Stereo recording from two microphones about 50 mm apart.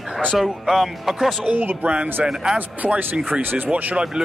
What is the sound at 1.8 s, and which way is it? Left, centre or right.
Speech, right.